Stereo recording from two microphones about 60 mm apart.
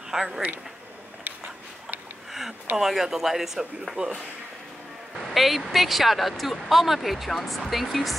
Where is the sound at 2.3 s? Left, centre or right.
Centre.